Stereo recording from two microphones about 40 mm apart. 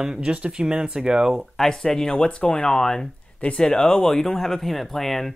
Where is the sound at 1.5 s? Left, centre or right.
Centre.